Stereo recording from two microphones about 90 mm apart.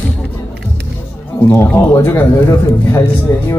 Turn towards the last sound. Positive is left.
turn(degrees=35)  # may be behind; listen again after turning